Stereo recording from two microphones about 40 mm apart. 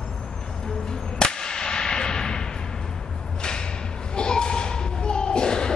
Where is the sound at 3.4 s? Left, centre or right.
Centre.